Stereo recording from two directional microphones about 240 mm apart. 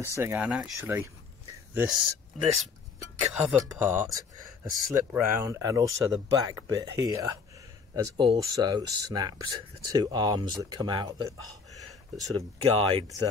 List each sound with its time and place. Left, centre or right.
0.0 s speech: centre
3.0 s speech: centre; by 13.0 s right